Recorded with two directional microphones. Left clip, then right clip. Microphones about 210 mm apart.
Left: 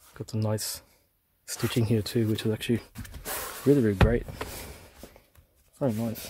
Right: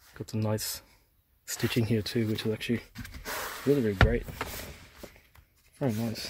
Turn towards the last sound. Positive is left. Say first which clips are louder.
# left 2 dB
turn(degrees=5)  # may be behind; listen again after turning